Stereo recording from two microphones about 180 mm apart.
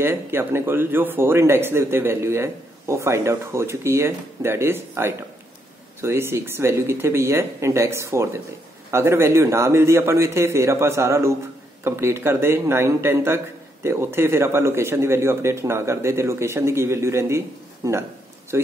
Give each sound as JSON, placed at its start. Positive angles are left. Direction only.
{"t": 0.0, "sound": "a man's voice", "side_deg": -15}